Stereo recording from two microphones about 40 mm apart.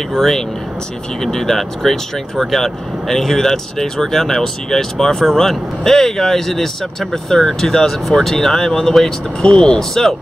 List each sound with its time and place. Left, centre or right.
0.1 s speech: centre
9.8 s speech: centre